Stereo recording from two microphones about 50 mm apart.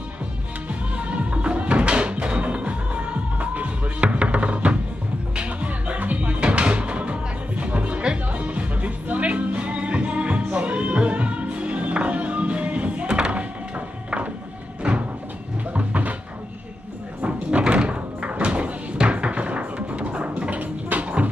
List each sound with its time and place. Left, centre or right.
0.7 s music: right
15.7 s cupboard open or close: right
17.2 s a sound: right